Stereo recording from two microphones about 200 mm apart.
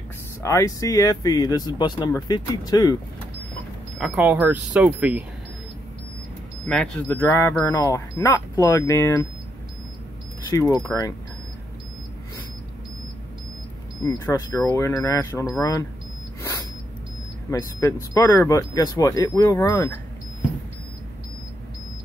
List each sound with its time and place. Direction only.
0.4 s speech: 15° left (ahead or behind)
4.0 s speech: 5° right (ahead or behind)
6.6 s speech: 5° left (ahead or behind)
10.5 s speech: 20° left (ahead or behind)
14.0 s speech: 20° left (ahead or behind)
17.5 s speech: 15° left (ahead or behind)